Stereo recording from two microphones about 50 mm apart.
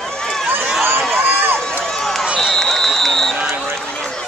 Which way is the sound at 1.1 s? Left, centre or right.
Right.